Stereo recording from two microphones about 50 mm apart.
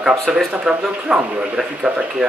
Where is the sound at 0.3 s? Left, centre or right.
Centre.